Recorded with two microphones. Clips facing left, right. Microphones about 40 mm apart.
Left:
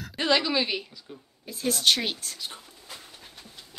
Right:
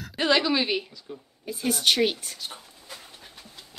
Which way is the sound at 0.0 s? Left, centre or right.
Centre.